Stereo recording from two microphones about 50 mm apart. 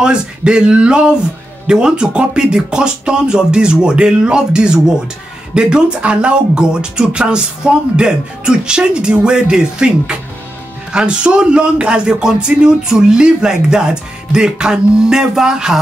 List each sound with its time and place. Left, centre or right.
0.0 s speech: centre